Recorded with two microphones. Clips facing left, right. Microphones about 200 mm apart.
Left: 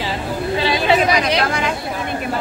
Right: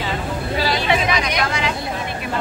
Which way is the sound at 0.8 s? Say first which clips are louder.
Left 4 dB; 35° left (ahead or behind).